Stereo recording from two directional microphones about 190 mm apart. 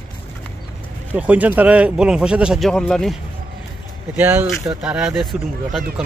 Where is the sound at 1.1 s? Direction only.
10° right (ahead or behind).